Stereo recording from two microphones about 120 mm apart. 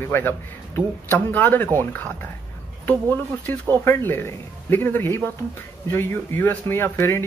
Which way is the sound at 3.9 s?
20° left (ahead or behind).